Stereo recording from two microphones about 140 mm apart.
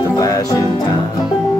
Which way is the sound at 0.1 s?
25° left (ahead or behind).